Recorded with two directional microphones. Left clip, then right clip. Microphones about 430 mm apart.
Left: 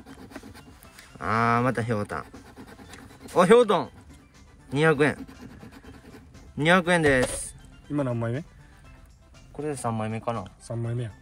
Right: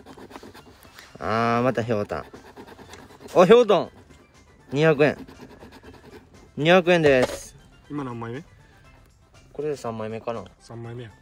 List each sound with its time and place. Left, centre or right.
0.0 s music: centre
1.1 s speech: centre
4.6 s music: centre
7.9 s speech: centre
9.6 s speech: centre